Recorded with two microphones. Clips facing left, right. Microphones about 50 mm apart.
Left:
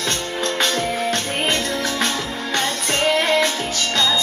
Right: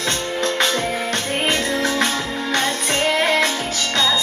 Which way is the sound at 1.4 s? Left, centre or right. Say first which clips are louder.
Right 3 dB; centre.